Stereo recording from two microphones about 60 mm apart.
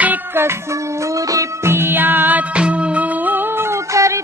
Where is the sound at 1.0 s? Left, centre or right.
Right.